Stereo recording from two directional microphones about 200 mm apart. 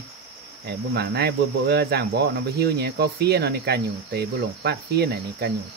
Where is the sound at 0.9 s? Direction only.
55° right (ahead or behind).